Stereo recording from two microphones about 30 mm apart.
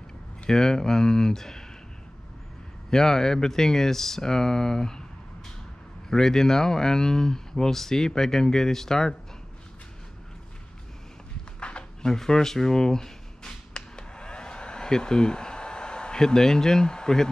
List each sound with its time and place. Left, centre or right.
0.5 s speech: centre
2.9 s speech: centre
6.0 s speech: centre
12.0 s a sound: centre
16.2 s speech: centre